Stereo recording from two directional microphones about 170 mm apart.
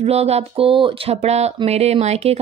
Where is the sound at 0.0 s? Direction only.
40° right (ahead or behind).